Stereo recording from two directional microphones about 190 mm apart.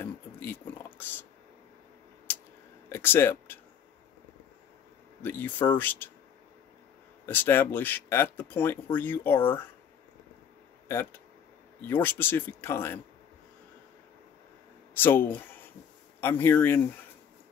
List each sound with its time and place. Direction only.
0.0 s a sound: 10° left (ahead or behind)
2.9 s speech: 10° left (ahead or behind)
5.2 s speech: 10° left (ahead or behind)
7.2 s speech: 10° left (ahead or behind)
10.9 s speech: 10° left (ahead or behind)
15.0 s speech: 10° left (ahead or behind)